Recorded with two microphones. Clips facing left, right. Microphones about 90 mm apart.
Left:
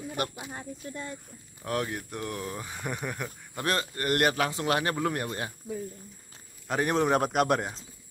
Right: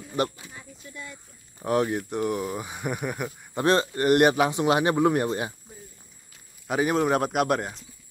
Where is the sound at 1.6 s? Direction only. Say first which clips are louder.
Right 7 dB; 20° right (ahead or behind).